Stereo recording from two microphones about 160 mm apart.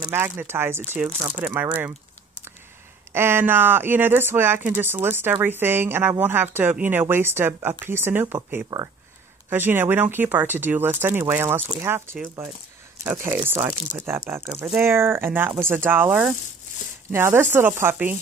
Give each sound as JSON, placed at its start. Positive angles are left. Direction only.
{"t": 0.0, "sound": "speech", "side_deg": -15}
{"t": 3.1, "sound": "speech", "side_deg": -15}
{"t": 8.6, "sound": "speech", "side_deg": -25}
{"t": 9.5, "sound": "speech", "side_deg": -15}